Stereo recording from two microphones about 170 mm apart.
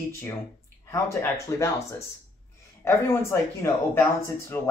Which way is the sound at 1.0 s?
15° left (ahead or behind).